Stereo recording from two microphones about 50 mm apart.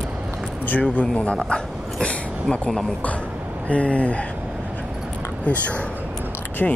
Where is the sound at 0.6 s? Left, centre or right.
Left.